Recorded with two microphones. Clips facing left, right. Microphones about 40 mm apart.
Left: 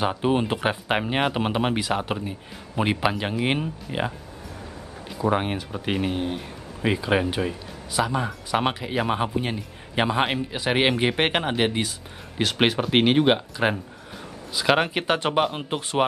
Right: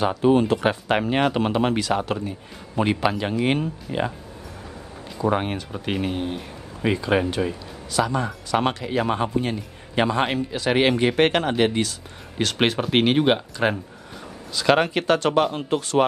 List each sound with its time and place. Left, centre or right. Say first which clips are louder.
0.0 s speech: right 4 dB; centre
5.1 s speech: right 1 dB; centre